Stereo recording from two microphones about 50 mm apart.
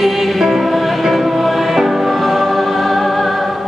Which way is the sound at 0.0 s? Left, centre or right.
Centre.